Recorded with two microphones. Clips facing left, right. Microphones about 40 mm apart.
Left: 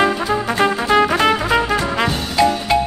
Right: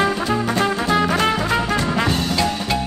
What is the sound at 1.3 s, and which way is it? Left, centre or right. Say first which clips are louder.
Music: left 3 dB; centre.